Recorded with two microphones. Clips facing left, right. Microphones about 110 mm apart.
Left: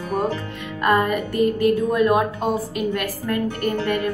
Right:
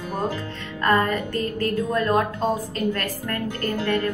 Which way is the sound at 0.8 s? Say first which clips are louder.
Left 2 dB; 15° left (ahead or behind).